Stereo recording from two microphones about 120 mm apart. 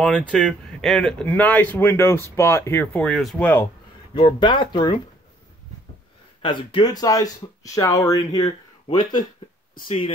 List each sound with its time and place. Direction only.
0.0 s speech: 10° left (ahead or behind)
3.0 s speech: centre (ahead or behind)
3.3 s speech: 10° left (ahead or behind)
4.1 s speech: 40° left (ahead or behind)
6.4 s speech: 40° left (ahead or behind)
9.8 s speech: 50° left (ahead or behind)